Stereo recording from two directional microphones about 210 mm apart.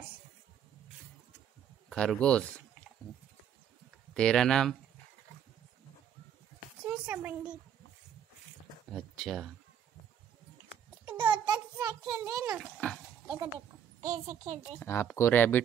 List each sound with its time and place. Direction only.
1.9 s speech: 5° left (ahead or behind)
4.1 s speech: 5° left (ahead or behind)
6.8 s speech: 5° right (ahead or behind)
8.8 s speech: centre (ahead or behind)
11.1 s a sound: 15° right (ahead or behind)
12.5 s speech: 5° left (ahead or behind)
14.0 s a child's voice: 40° right (ahead or behind)
14.8 s speech: 10° left (ahead or behind)